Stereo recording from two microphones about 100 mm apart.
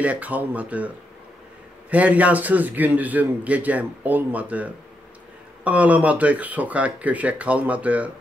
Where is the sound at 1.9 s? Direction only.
15° right (ahead or behind).